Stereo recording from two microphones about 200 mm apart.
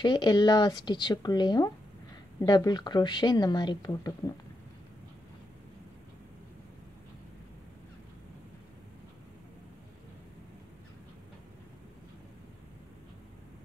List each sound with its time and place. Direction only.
0.0 s speech: 20° left (ahead or behind)